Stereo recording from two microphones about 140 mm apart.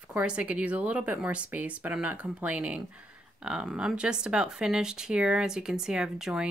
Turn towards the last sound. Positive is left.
turn(degrees=-5)  # may be behind; listen again after turning